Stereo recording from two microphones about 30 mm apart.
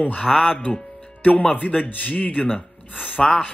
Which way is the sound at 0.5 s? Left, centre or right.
Left.